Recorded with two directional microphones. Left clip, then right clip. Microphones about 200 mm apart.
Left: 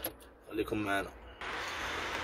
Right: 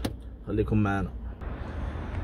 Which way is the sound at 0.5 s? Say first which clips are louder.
Right 4 dB; 15° right (ahead or behind).